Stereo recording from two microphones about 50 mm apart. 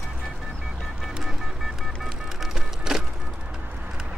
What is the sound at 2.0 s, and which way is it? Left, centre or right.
Music, centre.